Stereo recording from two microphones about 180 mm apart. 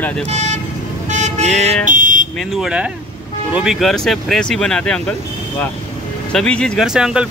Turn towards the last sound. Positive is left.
turn(degrees=-5)  # may be behind; listen again after turning